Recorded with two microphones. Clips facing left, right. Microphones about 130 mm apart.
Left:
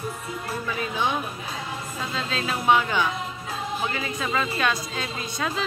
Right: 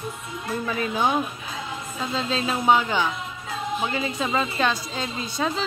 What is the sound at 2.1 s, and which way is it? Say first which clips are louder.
A woman's voice: right 4 dB; 25° right (ahead or behind).